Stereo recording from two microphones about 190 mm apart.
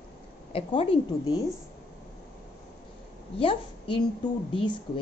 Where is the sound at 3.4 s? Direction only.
30° left (ahead or behind).